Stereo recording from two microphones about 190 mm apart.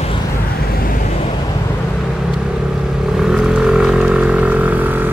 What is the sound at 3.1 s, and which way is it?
Vehicle, centre (ahead or behind).